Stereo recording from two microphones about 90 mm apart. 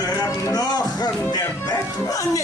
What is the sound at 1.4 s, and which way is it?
Bow-wow, 25° left (ahead or behind).